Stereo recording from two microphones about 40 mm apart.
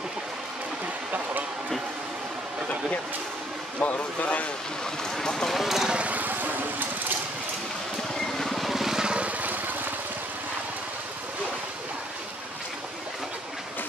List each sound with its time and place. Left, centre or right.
3.8 s speech: left
5.2 s speech: centre
5.5 s speech: centre
6.0 s vehicle: right
8.4 s vehicle: centre
9.0 s vehicle: right
9.4 s a sound: right